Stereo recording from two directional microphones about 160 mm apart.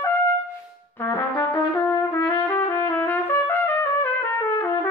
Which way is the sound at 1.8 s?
10° left (ahead or behind).